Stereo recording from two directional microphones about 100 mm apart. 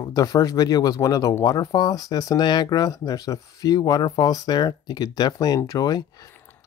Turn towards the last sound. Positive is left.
turn(degrees=40)  # may be behind; listen again after turning